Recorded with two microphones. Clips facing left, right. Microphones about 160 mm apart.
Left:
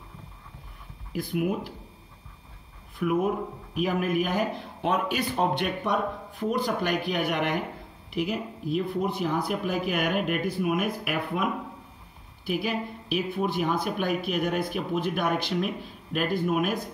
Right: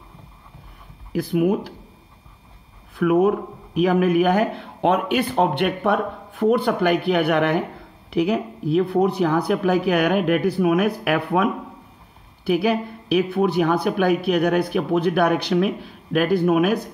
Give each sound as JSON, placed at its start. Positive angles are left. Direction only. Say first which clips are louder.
{"t": 1.1, "sound": "speech", "louder": "right 8 dB", "side_deg": -70}
{"t": 2.9, "sound": "speech", "louder": "right 8 dB", "side_deg": -70}
{"t": 12.4, "sound": "speech", "louder": "right 9 dB", "side_deg": -70}